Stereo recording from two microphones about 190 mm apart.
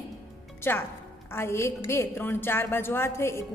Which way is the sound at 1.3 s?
15° left (ahead or behind).